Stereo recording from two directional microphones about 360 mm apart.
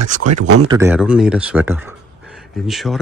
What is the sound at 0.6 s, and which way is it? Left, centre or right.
Speech, centre.